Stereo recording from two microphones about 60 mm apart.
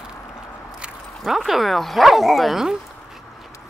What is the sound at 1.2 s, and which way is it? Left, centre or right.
Speech, centre.